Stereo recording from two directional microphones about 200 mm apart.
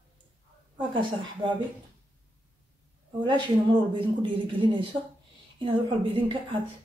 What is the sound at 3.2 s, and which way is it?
Speech, 25° right (ahead or behind).